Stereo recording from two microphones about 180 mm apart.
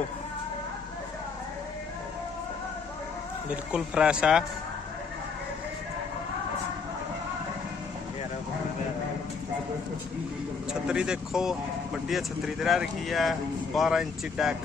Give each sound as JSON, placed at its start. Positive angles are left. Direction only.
{"t": 3.7, "sound": "speech", "side_deg": -5}
{"t": 10.7, "sound": "speech", "side_deg": -5}